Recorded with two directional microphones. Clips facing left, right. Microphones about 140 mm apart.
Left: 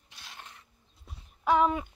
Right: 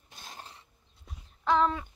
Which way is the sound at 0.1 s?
45° right (ahead or behind).